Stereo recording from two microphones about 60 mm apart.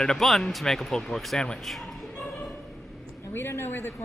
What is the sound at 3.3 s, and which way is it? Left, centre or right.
Speech, left.